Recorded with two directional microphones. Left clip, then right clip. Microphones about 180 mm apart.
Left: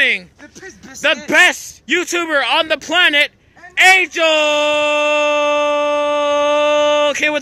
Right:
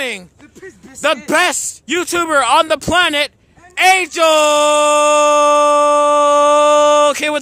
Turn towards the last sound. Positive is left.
turn(degrees=-20)  # may be behind; listen again after turning